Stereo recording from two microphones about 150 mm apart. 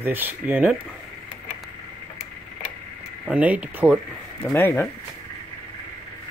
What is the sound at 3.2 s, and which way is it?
Speech, 10° right (ahead or behind).